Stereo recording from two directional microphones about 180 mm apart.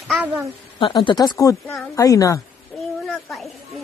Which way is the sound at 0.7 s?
25° left (ahead or behind).